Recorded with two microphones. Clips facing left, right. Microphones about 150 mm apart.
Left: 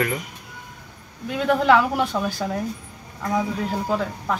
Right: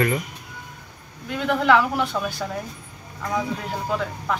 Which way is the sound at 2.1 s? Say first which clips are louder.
Left 2 dB; 25° left (ahead or behind).